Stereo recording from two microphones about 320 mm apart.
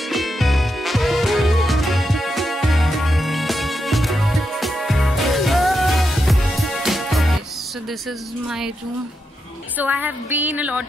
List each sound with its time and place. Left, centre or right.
0.1 s music: centre
9.8 s a woman's voice: centre